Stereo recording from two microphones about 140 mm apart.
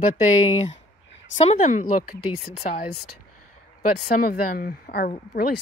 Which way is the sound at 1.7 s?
70° left (ahead or behind).